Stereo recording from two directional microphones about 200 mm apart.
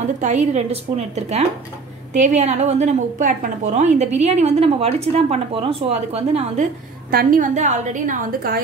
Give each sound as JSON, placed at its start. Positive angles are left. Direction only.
{"t": 0.2, "sound": "a woman's voice", "side_deg": -35}